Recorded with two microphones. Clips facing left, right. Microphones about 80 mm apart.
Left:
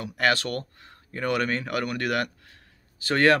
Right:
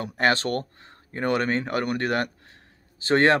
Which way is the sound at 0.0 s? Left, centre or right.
Right.